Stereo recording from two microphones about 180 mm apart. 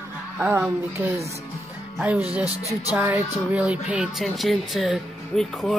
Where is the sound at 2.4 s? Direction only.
20° left (ahead or behind).